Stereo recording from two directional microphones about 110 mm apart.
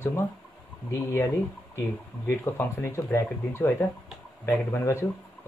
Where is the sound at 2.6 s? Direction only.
25° left (ahead or behind).